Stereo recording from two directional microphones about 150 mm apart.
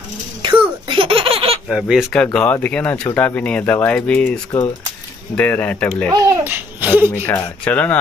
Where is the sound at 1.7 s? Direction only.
5° right (ahead or behind).